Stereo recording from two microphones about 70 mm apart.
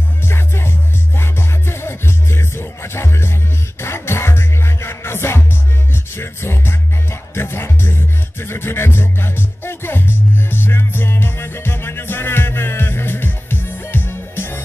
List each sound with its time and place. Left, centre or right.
0.3 s music: left